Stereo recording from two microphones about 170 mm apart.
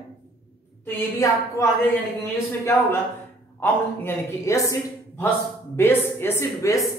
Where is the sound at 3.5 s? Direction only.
15° left (ahead or behind).